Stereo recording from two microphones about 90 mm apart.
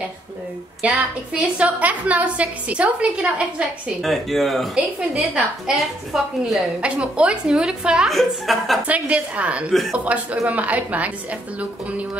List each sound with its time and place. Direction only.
0.8 s a woman's voice: 15° right (ahead or behind)
4.0 s speech: centre (ahead or behind)
4.7 s a woman's voice: 10° right (ahead or behind)
8.8 s a woman's voice: 15° right (ahead or behind)